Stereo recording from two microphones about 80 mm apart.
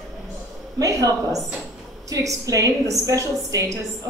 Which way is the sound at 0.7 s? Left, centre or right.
Right.